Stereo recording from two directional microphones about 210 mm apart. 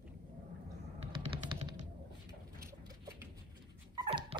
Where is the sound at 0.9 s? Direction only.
30° right (ahead or behind).